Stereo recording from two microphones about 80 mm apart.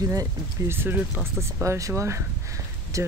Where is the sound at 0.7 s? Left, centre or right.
Right.